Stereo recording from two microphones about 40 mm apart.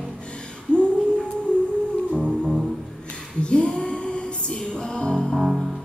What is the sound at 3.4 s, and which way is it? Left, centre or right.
Music, left.